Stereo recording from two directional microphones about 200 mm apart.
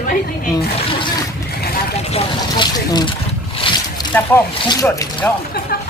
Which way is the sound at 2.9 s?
20° left (ahead or behind).